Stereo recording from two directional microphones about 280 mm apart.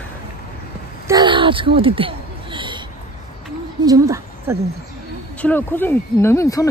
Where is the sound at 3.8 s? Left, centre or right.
Centre.